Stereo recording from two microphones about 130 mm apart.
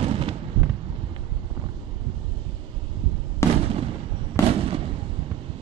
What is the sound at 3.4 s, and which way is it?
Fireworks, 20° left (ahead or behind).